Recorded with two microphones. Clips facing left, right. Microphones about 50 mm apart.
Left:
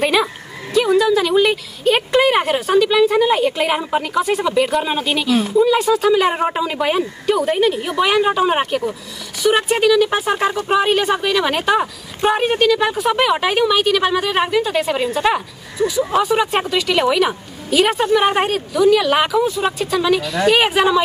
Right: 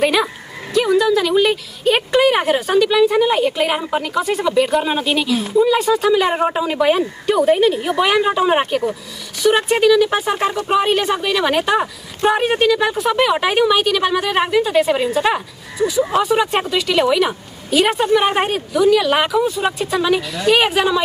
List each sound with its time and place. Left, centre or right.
0.0 s bow-wow: centre
0.7 s a woman's voice: centre
12.5 s a woman's voice: centre
12.8 s a woman's voice: centre
20.4 s a woman's voice: centre